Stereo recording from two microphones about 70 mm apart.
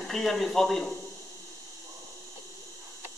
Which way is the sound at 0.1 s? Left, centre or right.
Centre.